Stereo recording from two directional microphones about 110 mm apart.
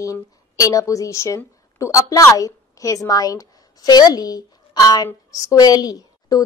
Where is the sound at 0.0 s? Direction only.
30° left (ahead or behind).